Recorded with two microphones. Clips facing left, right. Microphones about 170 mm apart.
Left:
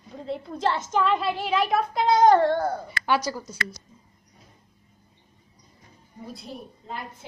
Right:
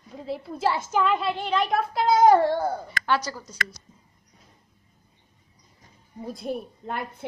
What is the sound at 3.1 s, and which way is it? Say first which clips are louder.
Speech: left 2 dB; 10° left (ahead or behind).